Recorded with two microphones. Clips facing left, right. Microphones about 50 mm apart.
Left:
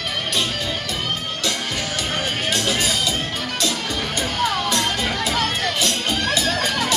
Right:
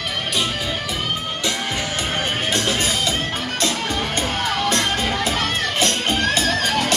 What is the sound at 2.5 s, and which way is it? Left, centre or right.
Music, right.